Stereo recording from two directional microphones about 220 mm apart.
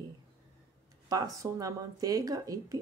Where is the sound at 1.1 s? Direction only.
15° right (ahead or behind).